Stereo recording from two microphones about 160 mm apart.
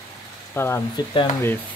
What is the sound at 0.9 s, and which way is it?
Speech, 25° left (ahead or behind).